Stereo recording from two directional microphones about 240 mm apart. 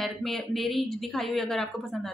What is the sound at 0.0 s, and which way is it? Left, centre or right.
Speech, centre.